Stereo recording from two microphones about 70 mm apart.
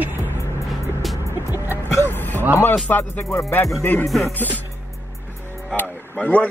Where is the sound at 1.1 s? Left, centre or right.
Left.